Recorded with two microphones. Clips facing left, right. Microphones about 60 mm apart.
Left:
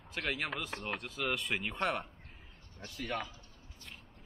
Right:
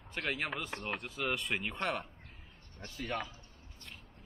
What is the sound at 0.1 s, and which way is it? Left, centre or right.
Speech, centre.